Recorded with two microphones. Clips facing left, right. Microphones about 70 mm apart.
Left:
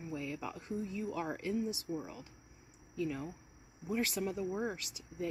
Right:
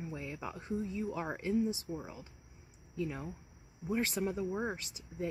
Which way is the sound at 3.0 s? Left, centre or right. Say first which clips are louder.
Left 1 dB; right.